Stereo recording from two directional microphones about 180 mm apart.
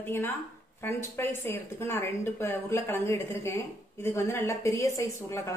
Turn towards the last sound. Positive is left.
turn(degrees=15)  # may be behind; listen again after turning